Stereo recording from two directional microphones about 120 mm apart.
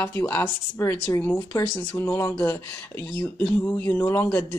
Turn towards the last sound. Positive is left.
turn(degrees=20)  # may be behind; listen again after turning